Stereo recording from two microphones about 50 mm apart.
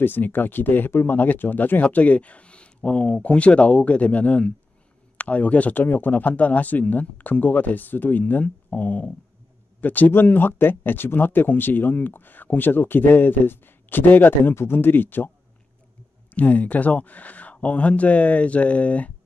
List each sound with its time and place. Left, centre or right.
0.0 s speech: left
14.5 s speech: left
14.8 s speech: left
16.3 s speech: left